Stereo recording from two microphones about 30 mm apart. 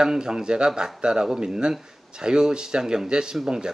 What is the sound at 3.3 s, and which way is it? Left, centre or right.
Speech, centre.